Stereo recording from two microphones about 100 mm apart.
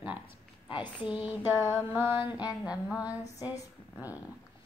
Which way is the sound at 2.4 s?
10° right (ahead or behind).